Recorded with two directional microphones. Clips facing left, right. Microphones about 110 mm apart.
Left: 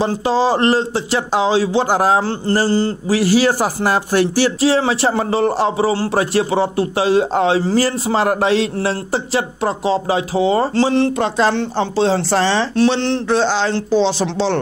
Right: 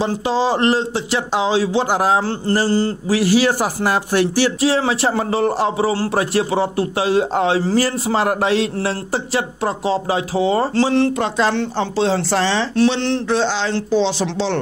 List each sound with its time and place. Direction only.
0.0 s speech: 40° left (ahead or behind)